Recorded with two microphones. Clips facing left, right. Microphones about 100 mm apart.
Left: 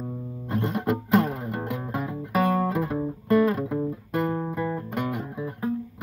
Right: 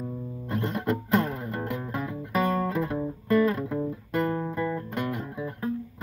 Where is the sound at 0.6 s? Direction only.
10° left (ahead or behind).